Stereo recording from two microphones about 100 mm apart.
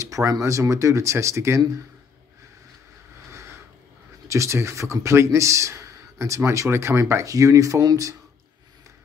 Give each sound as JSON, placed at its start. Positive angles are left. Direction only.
{"t": 0.0, "sound": "speech", "side_deg": -30}
{"t": 4.3, "sound": "speech", "side_deg": -30}